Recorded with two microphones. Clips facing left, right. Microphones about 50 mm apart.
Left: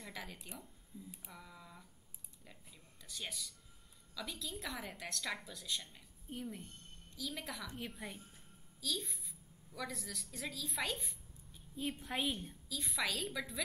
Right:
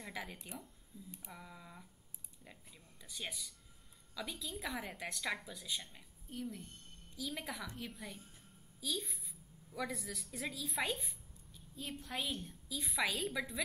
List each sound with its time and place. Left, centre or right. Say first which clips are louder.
0.0 s a woman's voice: right 2 dB; centre
0.9 s a woman's voice: left 2 dB; left
1.3 s a woman's voice: right 2 dB; centre
6.3 s a woman's voice: right 1 dB; centre
7.2 s a woman's voice: right 1 dB; centre
8.0 s a woman's voice: left 2 dB; centre
8.8 s a woman's voice: even; centre
11.5 s a sound: left 6 dB; left
11.9 s a woman's voice: left 1 dB; centre
12.6 s a woman's voice: right 2 dB; centre